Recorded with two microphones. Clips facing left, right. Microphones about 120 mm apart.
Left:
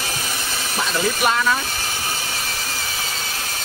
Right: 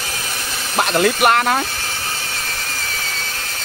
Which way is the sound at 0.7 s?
65° right (ahead or behind).